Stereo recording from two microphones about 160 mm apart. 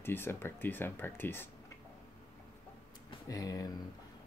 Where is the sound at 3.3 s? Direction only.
20° left (ahead or behind).